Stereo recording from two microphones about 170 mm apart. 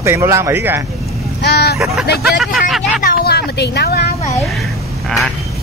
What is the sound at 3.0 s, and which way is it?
Vehicle, 60° left (ahead or behind).